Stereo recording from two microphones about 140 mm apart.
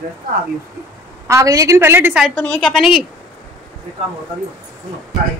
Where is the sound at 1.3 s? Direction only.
20° right (ahead or behind).